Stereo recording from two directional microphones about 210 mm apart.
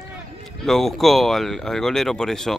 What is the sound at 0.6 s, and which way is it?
Speech, centre (ahead or behind).